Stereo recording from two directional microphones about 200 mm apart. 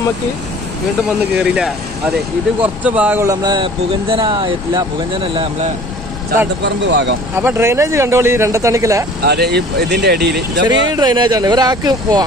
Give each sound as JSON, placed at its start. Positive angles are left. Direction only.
{"t": 1.0, "sound": "speech", "side_deg": -5}
{"t": 6.6, "sound": "speech", "side_deg": -60}
{"t": 7.3, "sound": "speech", "side_deg": -10}
{"t": 9.2, "sound": "speech", "side_deg": -55}
{"t": 10.6, "sound": "speech", "side_deg": -20}